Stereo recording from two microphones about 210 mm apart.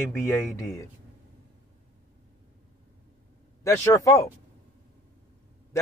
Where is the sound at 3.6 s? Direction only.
15° left (ahead or behind).